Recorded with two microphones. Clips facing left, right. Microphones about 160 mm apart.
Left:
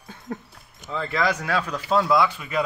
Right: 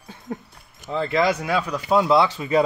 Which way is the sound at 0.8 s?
25° right (ahead or behind).